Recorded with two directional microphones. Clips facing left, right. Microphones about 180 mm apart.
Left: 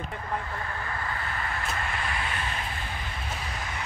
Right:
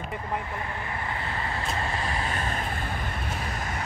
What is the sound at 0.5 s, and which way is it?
Vehicle, 20° right (ahead or behind).